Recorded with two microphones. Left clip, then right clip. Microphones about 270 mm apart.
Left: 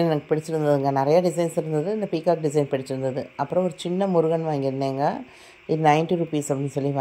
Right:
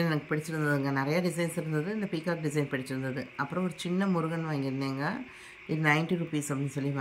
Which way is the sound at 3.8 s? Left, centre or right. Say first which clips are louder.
Left 7 dB; centre.